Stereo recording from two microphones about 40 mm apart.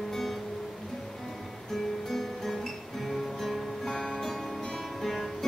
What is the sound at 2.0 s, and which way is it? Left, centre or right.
Music, centre.